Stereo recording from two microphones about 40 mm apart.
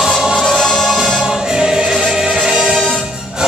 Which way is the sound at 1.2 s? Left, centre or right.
Centre.